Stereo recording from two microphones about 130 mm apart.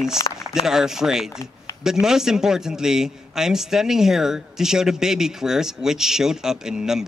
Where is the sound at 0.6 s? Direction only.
5° right (ahead or behind).